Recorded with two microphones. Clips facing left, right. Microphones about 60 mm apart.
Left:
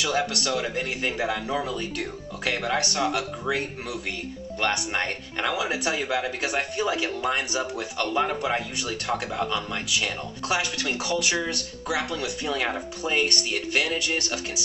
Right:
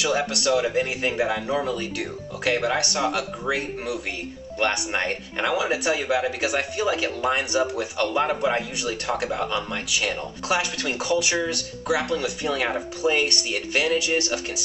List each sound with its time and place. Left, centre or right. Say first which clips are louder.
0.0 s speech: right 2 dB; centre
4.6 s speech: right 2 dB; centre
5.4 s speech: right 3 dB; centre